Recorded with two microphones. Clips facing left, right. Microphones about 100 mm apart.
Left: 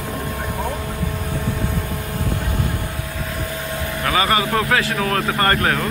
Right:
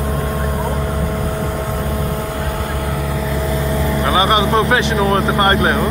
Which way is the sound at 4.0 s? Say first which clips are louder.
Right 3 dB; 25° right (ahead or behind).